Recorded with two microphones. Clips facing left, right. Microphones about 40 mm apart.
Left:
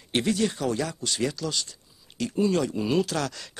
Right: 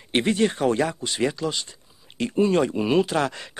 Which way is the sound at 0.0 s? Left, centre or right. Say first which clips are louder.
Right 4 dB; right.